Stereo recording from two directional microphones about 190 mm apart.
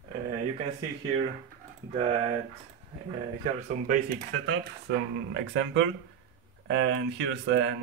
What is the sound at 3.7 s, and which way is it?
Speech, 45° right (ahead or behind).